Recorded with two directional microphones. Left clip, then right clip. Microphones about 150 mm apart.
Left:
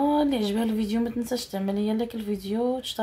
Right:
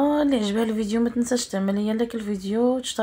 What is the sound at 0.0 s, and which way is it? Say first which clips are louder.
Speech: right 2 dB; 15° right (ahead or behind).